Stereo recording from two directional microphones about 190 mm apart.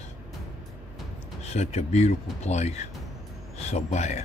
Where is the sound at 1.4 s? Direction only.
35° left (ahead or behind).